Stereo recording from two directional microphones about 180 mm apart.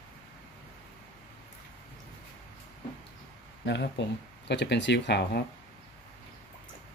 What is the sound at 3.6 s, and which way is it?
Speech, 75° left (ahead or behind).